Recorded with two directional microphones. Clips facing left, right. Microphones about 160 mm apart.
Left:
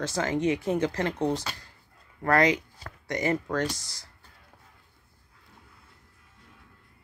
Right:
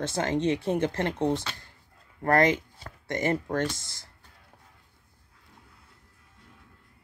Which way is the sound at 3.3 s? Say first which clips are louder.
Even; 30° right (ahead or behind).